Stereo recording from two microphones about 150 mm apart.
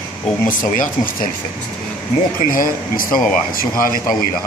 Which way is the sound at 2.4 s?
70° left (ahead or behind).